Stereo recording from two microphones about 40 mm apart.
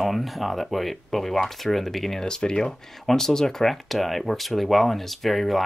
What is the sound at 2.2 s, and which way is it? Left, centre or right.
Speech, centre.